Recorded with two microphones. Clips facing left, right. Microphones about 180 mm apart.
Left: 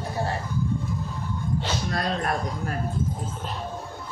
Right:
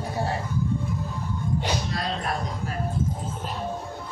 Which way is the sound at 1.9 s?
55° left (ahead or behind).